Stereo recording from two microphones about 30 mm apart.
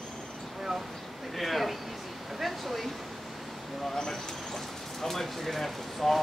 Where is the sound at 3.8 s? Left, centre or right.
Centre.